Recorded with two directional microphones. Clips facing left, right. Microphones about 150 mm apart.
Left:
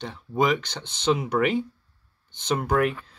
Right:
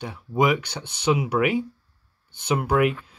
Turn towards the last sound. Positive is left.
turn(degrees=-5)  # may be behind; listen again after turning